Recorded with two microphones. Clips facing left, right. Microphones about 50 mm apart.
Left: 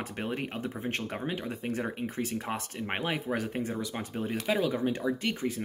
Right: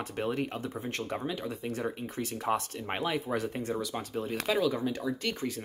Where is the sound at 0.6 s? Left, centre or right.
Left.